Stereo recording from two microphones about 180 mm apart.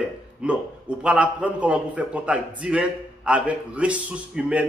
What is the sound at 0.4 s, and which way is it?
A man's voice, 5° right (ahead or behind).